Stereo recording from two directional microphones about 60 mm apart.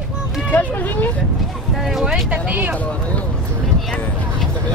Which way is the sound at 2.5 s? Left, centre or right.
Right.